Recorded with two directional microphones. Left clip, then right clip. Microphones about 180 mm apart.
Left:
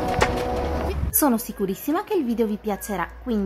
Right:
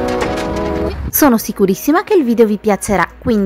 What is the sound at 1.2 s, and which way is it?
A woman's voice, 30° right (ahead or behind).